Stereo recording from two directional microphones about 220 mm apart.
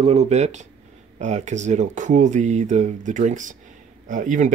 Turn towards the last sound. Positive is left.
turn(degrees=-35)  # may be behind; listen again after turning